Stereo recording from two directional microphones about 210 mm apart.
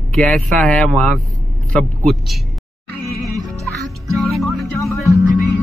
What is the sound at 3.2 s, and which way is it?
Music, centre (ahead or behind).